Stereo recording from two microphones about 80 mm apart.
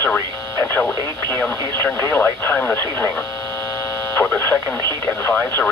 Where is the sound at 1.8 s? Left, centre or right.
Left.